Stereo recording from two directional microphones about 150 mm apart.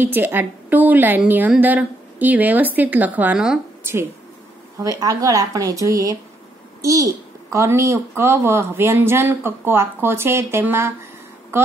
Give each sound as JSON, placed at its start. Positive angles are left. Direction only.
{"t": 0.0, "sound": "a woman's voice", "side_deg": -15}
{"t": 4.7, "sound": "a woman's voice", "side_deg": -25}